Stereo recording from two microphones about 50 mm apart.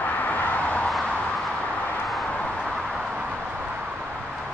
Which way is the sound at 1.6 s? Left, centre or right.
Left.